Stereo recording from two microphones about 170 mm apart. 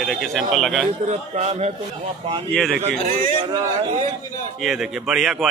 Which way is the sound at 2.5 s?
Centre (ahead or behind).